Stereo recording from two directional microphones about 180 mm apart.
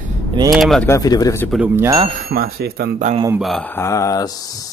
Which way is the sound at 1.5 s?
10° right (ahead or behind).